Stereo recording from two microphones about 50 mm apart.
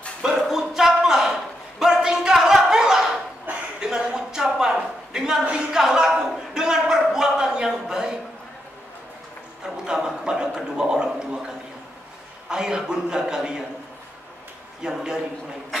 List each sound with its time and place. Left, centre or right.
0.2 s a sound: centre
10.0 s gargling: centre
12.4 s speech: centre
14.8 s speech: centre